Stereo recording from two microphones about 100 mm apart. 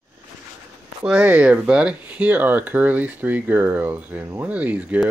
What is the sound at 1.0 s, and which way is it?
Speech, 10° right (ahead or behind).